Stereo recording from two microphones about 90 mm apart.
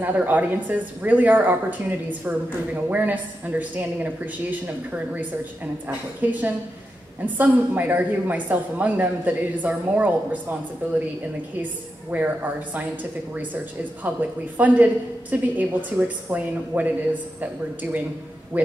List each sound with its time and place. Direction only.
0.0 s a woman's voice: 20° right (ahead or behind)